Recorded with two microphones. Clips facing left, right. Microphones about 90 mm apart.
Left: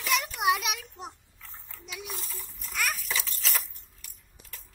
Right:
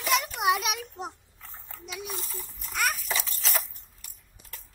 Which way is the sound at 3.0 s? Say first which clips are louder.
Right 2 dB; 25° right (ahead or behind).